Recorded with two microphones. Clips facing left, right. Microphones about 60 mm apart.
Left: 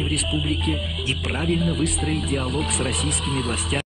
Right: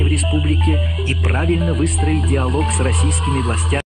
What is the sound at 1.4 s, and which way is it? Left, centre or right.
Speech, centre.